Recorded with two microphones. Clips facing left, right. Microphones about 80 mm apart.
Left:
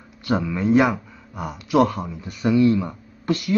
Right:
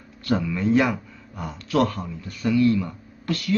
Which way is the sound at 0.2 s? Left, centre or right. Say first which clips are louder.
Left 1 dB; centre.